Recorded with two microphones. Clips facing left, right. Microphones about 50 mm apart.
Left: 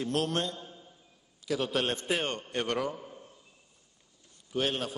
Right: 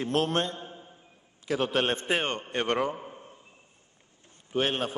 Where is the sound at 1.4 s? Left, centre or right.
Right.